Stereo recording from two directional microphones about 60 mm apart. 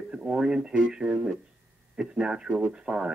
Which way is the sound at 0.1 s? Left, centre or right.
Centre.